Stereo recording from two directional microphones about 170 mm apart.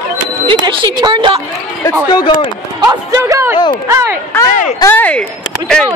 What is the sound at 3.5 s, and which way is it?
Speech, 25° left (ahead or behind).